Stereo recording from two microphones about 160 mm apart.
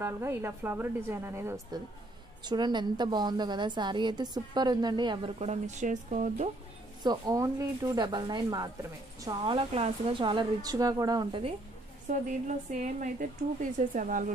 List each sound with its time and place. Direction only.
0.0 s a woman's voice: 15° right (ahead or behind)
2.4 s a woman's voice: 25° right (ahead or behind)
5.5 s a woman's voice: 50° right (ahead or behind)
7.0 s a woman's voice: 25° right (ahead or behind)
12.1 s a woman's voice: 50° right (ahead or behind)